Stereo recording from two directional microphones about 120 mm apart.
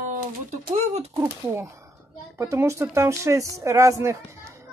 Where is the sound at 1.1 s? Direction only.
20° right (ahead or behind).